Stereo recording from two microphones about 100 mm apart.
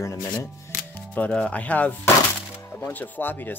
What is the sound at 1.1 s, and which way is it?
Speech, 10° left (ahead or behind).